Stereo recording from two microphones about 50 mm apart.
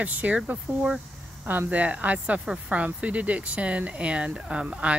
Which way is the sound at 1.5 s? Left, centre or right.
Right.